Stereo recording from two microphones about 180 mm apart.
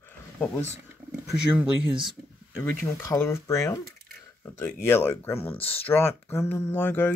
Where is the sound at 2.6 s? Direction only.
15° left (ahead or behind).